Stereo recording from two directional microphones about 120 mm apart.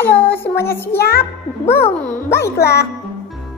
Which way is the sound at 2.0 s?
20° left (ahead or behind).